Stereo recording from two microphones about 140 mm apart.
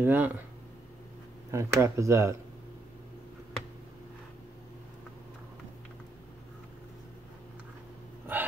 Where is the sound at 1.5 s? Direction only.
20° right (ahead or behind).